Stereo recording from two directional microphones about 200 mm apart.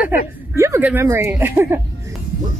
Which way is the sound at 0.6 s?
15° right (ahead or behind).